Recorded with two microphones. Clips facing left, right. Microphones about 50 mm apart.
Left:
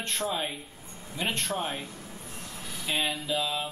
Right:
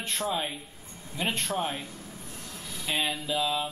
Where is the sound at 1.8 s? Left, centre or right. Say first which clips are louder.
Even; left.